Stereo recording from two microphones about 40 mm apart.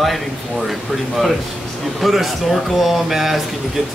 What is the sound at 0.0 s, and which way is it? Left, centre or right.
Speech, centre.